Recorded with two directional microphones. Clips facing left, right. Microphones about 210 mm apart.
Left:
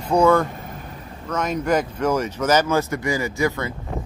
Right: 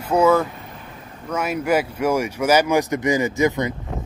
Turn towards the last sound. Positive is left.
turn(degrees=-20)  # may be behind; listen again after turning